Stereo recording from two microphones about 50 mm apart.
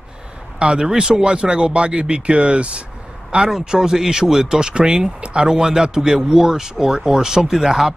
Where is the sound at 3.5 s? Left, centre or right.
Centre.